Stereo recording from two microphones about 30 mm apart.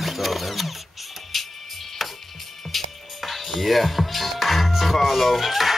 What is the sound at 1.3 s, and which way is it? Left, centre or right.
Music, centre.